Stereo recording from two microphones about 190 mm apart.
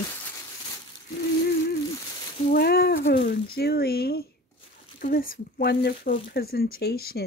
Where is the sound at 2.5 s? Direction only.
55° left (ahead or behind).